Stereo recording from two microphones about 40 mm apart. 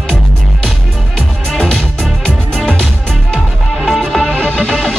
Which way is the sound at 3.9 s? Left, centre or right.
Centre.